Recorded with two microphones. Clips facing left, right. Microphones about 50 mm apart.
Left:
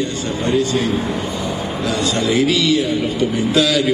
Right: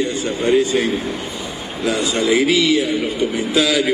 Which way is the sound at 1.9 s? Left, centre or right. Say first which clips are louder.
Right 2 dB; centre.